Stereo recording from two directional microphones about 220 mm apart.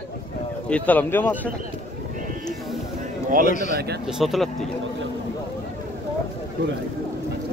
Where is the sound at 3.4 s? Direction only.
35° left (ahead or behind).